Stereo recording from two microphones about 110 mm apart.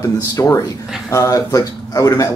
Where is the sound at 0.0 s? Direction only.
30° left (ahead or behind).